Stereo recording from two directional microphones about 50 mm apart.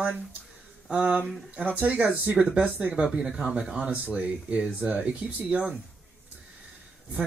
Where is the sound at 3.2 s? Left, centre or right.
Centre.